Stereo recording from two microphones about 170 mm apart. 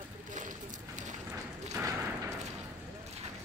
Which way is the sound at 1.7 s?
20° right (ahead or behind).